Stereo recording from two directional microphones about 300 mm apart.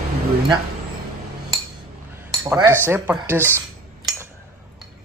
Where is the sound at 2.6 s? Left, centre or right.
Centre.